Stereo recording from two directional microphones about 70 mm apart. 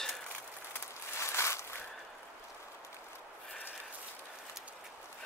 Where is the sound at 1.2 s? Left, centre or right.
Left.